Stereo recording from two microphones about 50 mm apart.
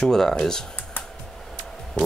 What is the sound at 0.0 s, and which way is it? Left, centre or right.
Speech, centre.